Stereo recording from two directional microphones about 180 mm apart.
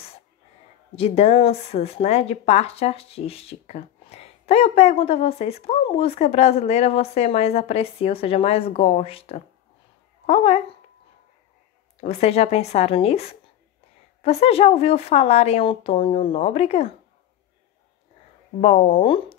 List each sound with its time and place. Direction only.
0.9 s speech: 35° left (ahead or behind)
12.0 s speech: 35° left (ahead or behind)
18.6 s speech: 35° left (ahead or behind)